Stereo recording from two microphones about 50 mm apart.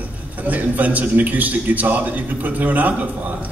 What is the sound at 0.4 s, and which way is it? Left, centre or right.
A man's voice, right.